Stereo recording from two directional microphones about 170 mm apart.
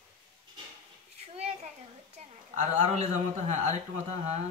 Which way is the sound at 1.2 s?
35° right (ahead or behind).